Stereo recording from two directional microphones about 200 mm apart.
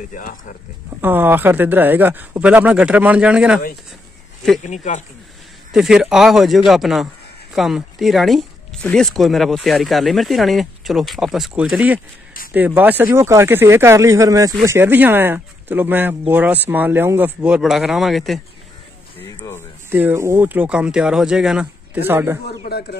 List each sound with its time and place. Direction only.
0.1 s speech: 40° left (ahead or behind)
1.0 s speech: 10° right (ahead or behind)
4.6 s speech: 35° left (ahead or behind)
5.7 s speech: 5° right (ahead or behind)
19.1 s speech: 15° left (ahead or behind)
19.9 s speech: 10° right (ahead or behind)
22.7 s speech: 55° left (ahead or behind)